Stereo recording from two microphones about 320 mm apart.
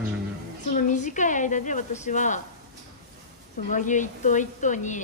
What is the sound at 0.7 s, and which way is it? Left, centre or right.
A woman's voice, left.